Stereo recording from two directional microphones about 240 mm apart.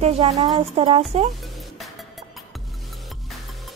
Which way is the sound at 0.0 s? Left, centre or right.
Right.